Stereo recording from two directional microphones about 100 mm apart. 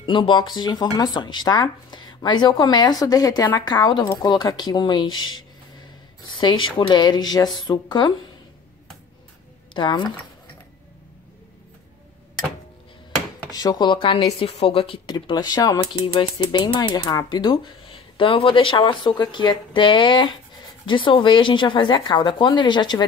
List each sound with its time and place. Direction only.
0.0 s speech: 50° left (ahead or behind)
9.8 s speech: 50° left (ahead or behind)
13.5 s speech: 40° left (ahead or behind); by 14.2 s 60° left (ahead or behind)
14.4 s a woman's voice: 75° left (ahead or behind)
15.0 s speech: 45° left (ahead or behind)
15.8 s speech: 55° left (ahead or behind)